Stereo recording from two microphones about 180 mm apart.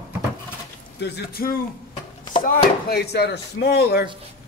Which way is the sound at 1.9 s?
30° left (ahead or behind).